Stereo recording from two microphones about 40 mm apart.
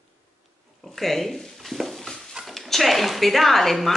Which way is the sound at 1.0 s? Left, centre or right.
Centre.